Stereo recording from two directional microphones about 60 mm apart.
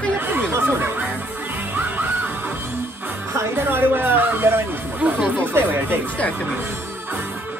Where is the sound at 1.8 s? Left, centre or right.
Right.